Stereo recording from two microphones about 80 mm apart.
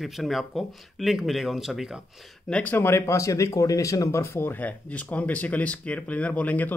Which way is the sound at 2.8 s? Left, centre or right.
Left.